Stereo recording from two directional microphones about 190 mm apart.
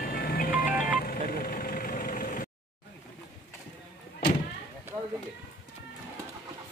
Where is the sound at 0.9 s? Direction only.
50° left (ahead or behind).